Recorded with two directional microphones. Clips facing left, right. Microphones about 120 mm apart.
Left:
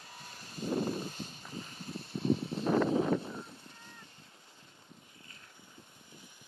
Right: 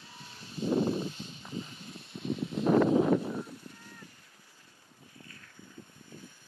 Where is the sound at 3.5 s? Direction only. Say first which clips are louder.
Right 5 dB; 25° left (ahead or behind).